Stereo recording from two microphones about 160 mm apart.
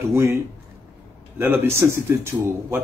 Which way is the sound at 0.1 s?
15° right (ahead or behind).